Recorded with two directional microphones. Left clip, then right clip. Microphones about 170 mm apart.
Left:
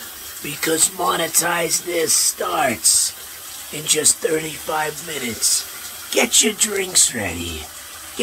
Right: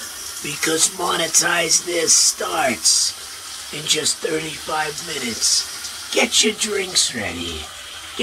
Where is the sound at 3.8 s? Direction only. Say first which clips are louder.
Left 1 dB; 15° left (ahead or behind).